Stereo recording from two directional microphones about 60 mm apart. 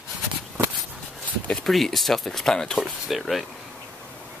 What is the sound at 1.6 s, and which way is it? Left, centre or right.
Speech, centre.